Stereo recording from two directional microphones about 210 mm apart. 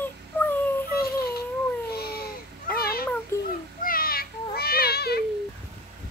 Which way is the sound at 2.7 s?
45° left (ahead or behind).